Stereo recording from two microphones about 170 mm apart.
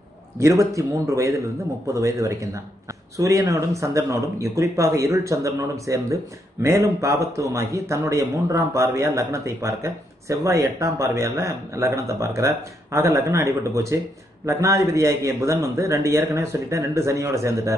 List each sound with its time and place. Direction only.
0.4 s speech: 20° right (ahead or behind)